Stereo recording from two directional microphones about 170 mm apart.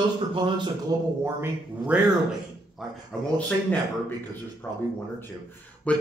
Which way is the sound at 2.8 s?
5° left (ahead or behind).